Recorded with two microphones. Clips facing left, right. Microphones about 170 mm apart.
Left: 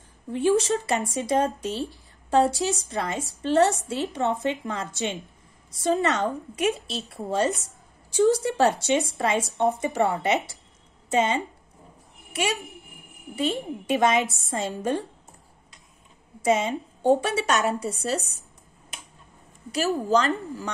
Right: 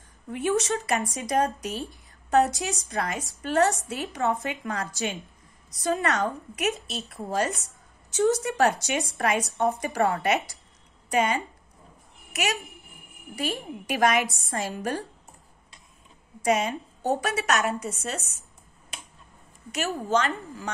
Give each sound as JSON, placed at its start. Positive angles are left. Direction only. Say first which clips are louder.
{"t": 0.3, "sound": "a woman's voice", "louder": "left 4 dB", "side_deg": 30}
{"t": 8.1, "sound": "a woman's voice", "louder": "left 3 dB", "side_deg": 30}
{"t": 16.4, "sound": "a woman's voice", "louder": "left 2 dB", "side_deg": 25}
{"t": 19.7, "sound": "a woman's voice", "louder": "left 4 dB", "side_deg": 35}